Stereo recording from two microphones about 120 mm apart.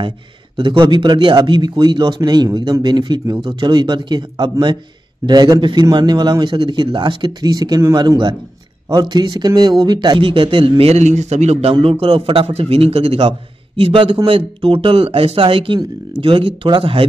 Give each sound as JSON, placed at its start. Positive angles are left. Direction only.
{"t": 0.6, "sound": "speech", "side_deg": -45}
{"t": 8.8, "sound": "a man's voice", "side_deg": -35}
{"t": 10.9, "sound": "a man's voice", "side_deg": -75}
{"t": 11.7, "sound": "a man's voice", "side_deg": -50}